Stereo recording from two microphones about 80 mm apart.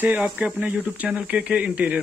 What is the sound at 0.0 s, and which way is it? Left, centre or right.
Speech, centre.